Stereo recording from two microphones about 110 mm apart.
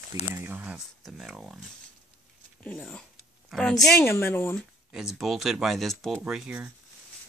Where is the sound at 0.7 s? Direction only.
Centre (ahead or behind).